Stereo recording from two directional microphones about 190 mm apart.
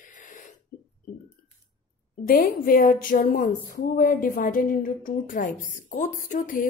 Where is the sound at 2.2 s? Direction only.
50° left (ahead or behind).